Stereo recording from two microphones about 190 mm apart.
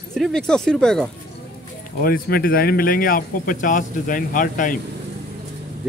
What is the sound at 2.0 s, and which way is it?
Speech, 50° left (ahead or behind).